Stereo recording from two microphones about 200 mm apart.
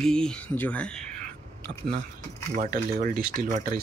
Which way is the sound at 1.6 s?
50° right (ahead or behind).